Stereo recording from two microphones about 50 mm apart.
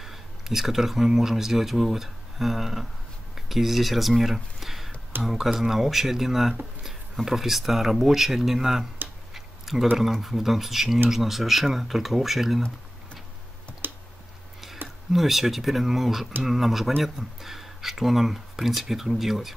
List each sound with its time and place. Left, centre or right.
0.0 s speech: centre
9.3 s a sound: centre
9.9 s speech: centre
13.8 s clicking: right
14.8 s a sound: right
15.1 s speech: centre